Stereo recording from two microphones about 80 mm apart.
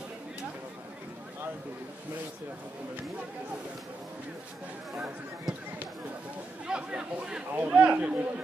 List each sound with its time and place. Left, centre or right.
4.9 s speech: centre
6.7 s speech: centre